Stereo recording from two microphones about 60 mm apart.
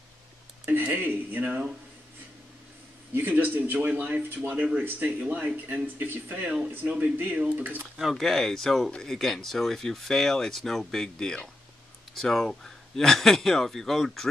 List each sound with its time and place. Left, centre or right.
0.7 s speech: right
3.3 s speech: right
8.0 s speech: centre